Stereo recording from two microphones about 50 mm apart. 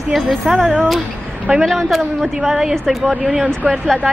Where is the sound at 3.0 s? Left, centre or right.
Right.